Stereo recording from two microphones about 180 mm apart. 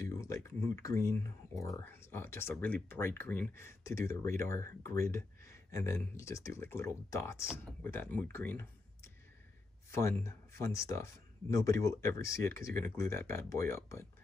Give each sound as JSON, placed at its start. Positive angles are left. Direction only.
{"t": 0.0, "sound": "speech", "side_deg": 15}